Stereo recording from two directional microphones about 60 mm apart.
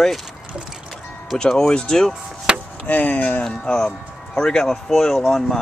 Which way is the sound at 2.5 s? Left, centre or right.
Centre.